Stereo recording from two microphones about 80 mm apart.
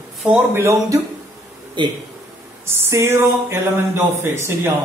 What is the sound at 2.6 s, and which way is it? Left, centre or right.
A man's voice, right.